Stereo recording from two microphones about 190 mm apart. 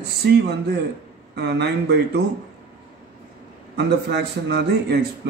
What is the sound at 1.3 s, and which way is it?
Speech, 65° right (ahead or behind).